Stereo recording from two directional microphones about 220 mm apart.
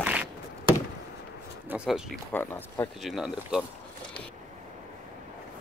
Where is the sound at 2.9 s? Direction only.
Centre (ahead or behind).